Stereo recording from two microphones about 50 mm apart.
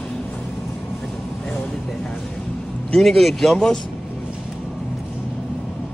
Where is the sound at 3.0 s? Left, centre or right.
Centre.